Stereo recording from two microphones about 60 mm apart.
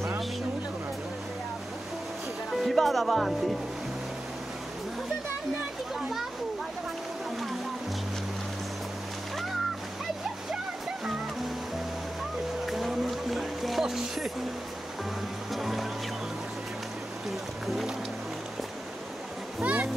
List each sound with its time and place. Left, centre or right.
2.5 s speech: centre
5.9 s a sound: centre
12.6 s music: centre
15.5 s music: centre
19.6 s bee: right